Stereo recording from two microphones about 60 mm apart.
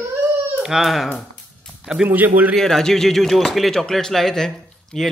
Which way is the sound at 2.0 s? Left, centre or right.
Right.